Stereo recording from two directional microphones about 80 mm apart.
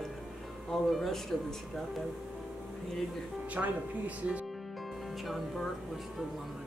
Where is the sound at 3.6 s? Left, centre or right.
Centre.